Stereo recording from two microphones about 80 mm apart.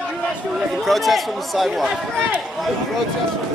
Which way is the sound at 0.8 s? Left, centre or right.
Centre.